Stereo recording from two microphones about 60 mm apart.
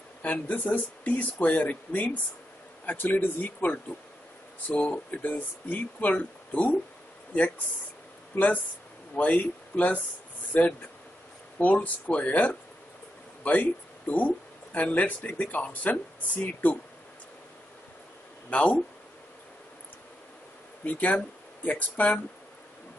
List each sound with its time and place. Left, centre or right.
0.2 s speech: left
9.1 s speech: left
18.5 s speech: left
20.8 s speech: left